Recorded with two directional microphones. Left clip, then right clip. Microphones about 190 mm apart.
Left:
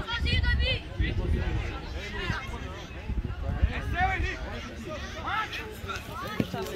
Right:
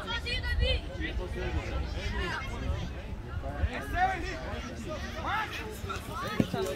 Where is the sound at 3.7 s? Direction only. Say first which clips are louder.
Left 1 dB; 65° right (ahead or behind).